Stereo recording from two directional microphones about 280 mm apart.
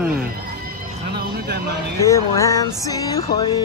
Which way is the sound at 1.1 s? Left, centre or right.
Right.